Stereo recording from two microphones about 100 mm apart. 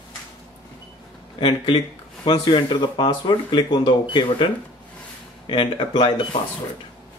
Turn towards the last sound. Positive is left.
turn(degrees=55)  # may be behind; listen again after turning